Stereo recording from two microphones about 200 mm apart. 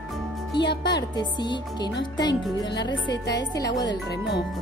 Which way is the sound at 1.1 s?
20° left (ahead or behind).